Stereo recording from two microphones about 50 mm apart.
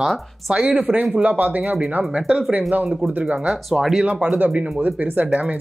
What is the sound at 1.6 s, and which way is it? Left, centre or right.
Speech, centre.